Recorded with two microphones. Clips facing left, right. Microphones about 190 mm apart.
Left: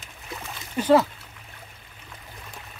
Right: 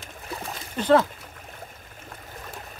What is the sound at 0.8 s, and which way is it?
Speech, 10° left (ahead or behind).